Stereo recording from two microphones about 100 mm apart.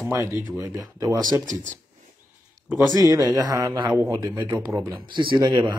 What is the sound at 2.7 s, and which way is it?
Speech, 35° right (ahead or behind).